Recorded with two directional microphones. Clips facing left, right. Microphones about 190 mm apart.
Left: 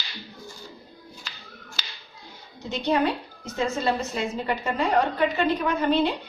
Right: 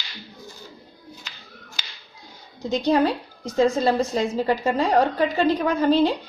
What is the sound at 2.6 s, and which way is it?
A woman's voice, 35° right (ahead or behind).